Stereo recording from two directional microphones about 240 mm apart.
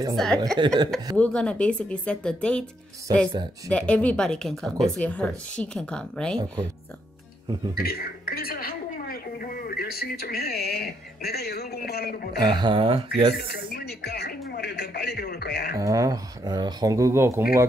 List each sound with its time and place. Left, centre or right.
0.1 s speech: centre
0.6 s speech: centre
1.1 s speech: centre
3.1 s speech: centre
3.7 s speech: centre
7.7 s a woman's voice: left
12.5 s speech: right
13.7 s speech: left
15.7 s speech: centre